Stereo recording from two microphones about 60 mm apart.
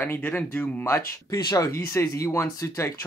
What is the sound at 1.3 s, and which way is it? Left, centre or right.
Speech, left.